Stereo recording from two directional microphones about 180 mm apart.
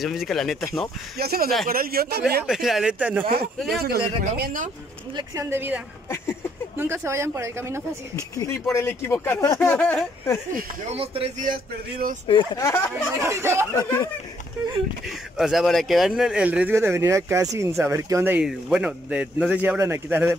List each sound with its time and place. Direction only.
0.0 s speech: centre (ahead or behind)
1.1 s speech: 60° right (ahead or behind)
2.4 s speech: centre (ahead or behind)
3.7 s speech: 60° right (ahead or behind)
5.1 s speech: 15° right (ahead or behind)
6.8 s speech: 15° right (ahead or behind)
8.4 s speech: 15° left (ahead or behind)
10.9 s speech: 35° right (ahead or behind)
11.4 s speech: 50° right (ahead or behind)
12.3 s speech: 20° left (ahead or behind)
13.2 s speech: 15° right (ahead or behind)
13.7 s speech: 20° left (ahead or behind)
15.3 s speech: centre (ahead or behind)